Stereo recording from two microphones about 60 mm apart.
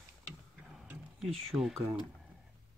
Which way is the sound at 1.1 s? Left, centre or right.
Centre.